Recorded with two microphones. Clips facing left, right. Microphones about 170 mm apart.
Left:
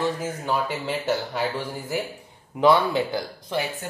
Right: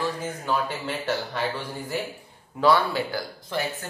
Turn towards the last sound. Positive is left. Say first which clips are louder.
# left 2 dB
turn(degrees=15)  # may be behind; listen again after turning